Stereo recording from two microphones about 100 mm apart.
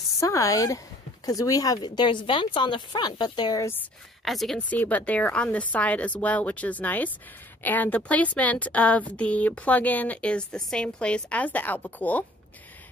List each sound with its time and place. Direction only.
0.2 s speech: 30° left (ahead or behind)
4.2 s a woman's voice: centre (ahead or behind)
4.6 s a woman's voice: 15° left (ahead or behind)